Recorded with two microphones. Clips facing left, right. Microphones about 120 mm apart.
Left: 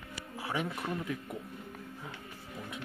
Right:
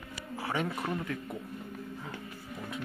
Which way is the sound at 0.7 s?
20° right (ahead or behind).